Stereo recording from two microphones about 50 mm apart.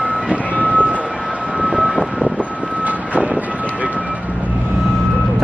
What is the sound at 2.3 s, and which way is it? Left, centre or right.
Vehicle, right.